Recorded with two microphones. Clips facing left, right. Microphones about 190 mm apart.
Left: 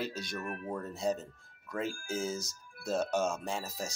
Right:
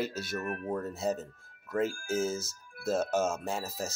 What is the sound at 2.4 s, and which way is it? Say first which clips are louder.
Speech: right 6 dB; 5° right (ahead or behind).